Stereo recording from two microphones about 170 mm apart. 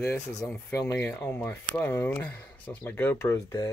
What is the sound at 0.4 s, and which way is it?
Speech, 5° left (ahead or behind).